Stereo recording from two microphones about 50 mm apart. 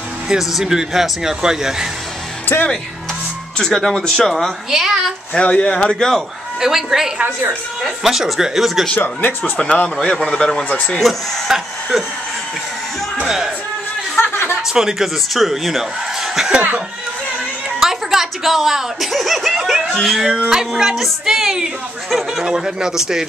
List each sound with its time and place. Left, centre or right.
0.3 s speech: centre
3.5 s speech: centre
4.6 s speech: centre
5.3 s speech: left
6.6 s speech: centre
8.9 s speech: left
9.4 s speech: centre
11.0 s speech: centre
14.1 s chuckle: left
14.7 s speech: centre
17.7 s speech: centre
20.2 s speech: centre